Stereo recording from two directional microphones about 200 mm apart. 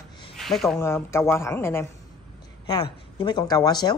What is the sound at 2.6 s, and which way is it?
A woman's voice, 25° left (ahead or behind).